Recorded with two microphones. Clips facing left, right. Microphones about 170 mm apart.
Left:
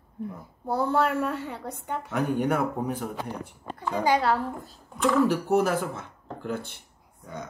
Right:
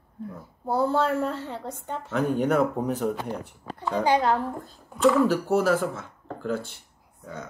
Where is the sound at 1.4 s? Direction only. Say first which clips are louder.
Right 1 dB; 10° left (ahead or behind).